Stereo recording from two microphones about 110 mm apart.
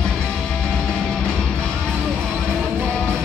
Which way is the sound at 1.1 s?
5° left (ahead or behind).